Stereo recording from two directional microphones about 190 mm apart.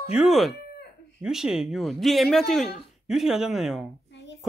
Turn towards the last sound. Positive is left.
turn(degrees=70)  # may be behind; listen again after turning